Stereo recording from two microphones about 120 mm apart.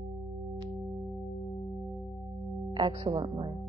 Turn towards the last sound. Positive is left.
turn(degrees=-40)  # may be behind; listen again after turning